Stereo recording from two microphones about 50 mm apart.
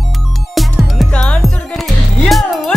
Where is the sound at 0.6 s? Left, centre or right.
Centre.